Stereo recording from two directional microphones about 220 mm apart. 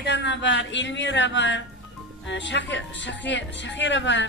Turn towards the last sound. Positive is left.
turn(degrees=55)  # may be behind; listen again after turning